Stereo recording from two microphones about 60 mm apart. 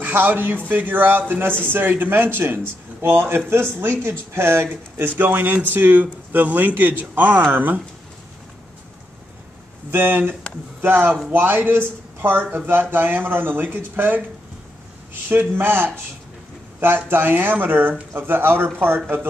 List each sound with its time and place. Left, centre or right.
0.0 s speech: right
9.8 s speech: right
15.2 s speech: right